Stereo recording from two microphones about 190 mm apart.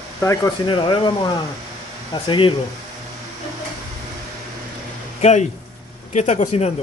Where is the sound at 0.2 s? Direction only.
15° left (ahead or behind).